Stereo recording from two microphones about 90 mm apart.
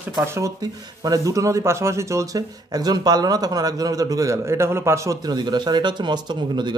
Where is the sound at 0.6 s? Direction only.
40° right (ahead or behind).